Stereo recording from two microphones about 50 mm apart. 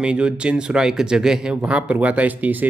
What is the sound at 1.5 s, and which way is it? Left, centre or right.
Speech, right.